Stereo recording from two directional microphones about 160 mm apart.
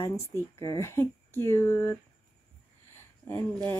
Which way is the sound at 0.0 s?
20° left (ahead or behind).